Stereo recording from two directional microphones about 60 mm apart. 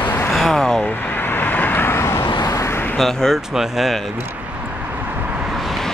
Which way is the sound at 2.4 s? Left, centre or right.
Left.